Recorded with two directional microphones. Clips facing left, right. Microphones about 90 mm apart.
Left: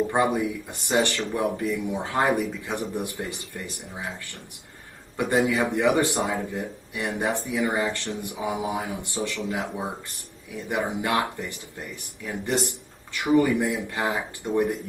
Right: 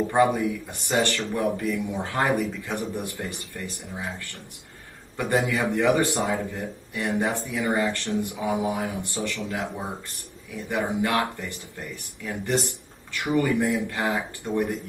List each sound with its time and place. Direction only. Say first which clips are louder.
0.1 s a man's voice: right 2 dB; 20° left (ahead or behind)